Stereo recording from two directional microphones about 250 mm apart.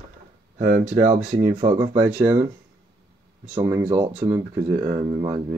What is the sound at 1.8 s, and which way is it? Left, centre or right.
Speech, centre.